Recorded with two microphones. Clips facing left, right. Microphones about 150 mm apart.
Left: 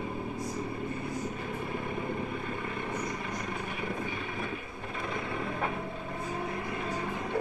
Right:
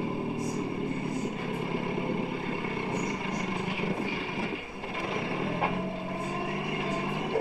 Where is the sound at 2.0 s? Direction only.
20° right (ahead or behind).